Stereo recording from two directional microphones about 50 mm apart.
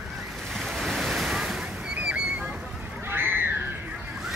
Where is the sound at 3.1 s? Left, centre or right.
Right.